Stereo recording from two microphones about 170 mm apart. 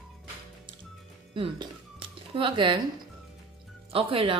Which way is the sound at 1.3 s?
30° right (ahead or behind).